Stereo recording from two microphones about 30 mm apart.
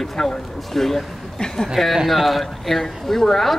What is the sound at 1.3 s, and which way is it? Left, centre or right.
Speech, centre.